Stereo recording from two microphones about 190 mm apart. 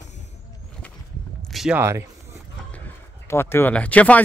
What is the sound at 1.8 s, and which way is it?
Speech, 15° right (ahead or behind).